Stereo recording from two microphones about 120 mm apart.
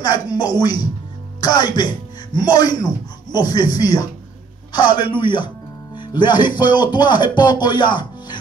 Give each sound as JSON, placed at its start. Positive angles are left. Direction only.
{"t": 0.0, "sound": "speech", "side_deg": 35}
{"t": 7.7, "sound": "music", "side_deg": 40}